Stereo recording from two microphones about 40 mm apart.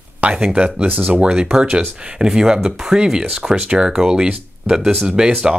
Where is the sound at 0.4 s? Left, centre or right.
Right.